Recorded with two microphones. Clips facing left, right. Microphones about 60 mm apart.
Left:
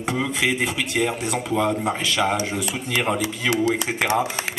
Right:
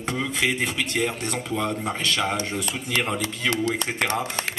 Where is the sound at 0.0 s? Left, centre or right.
Centre.